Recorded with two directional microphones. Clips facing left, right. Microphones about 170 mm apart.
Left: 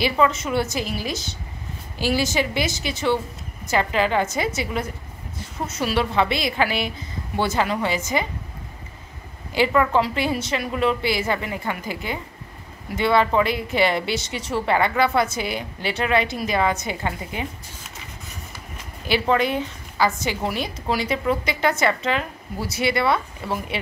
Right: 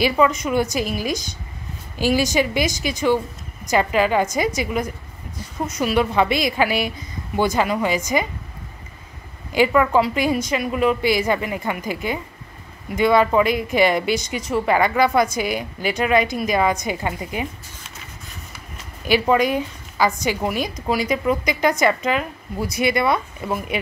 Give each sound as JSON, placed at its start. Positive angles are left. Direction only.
{"t": 0.0, "sound": "a woman's voice", "side_deg": -15}
{"t": 5.9, "sound": "a woman's voice", "side_deg": -15}
{"t": 9.5, "sound": "a woman's voice", "side_deg": -15}
{"t": 19.0, "sound": "a woman's voice", "side_deg": -15}